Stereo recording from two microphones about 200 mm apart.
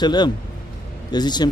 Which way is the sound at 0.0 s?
20° left (ahead or behind).